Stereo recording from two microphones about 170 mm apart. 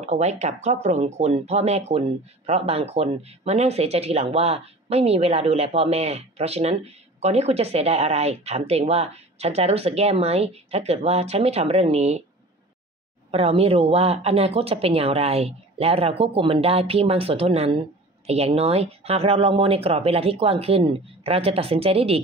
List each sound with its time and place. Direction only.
0.0 s speech: 40° right (ahead or behind)
13.3 s speech: 35° right (ahead or behind)